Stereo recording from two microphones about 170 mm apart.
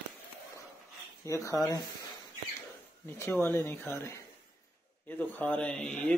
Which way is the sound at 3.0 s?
15° left (ahead or behind).